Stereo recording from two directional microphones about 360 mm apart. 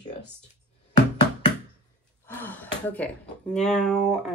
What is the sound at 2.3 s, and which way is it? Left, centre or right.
Speech, centre.